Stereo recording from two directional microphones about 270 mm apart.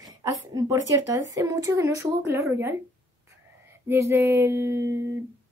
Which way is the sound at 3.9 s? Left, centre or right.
Centre.